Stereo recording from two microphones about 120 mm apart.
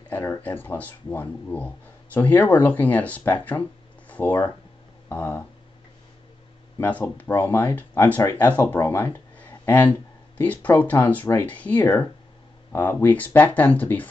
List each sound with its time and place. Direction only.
0.1 s speech: 15° left (ahead or behind)
6.8 s speech: 15° left (ahead or behind)